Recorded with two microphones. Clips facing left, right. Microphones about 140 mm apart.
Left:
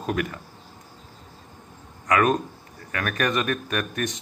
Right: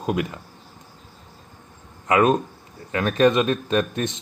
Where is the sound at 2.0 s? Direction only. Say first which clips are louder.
Right 3 dB; 20° right (ahead or behind).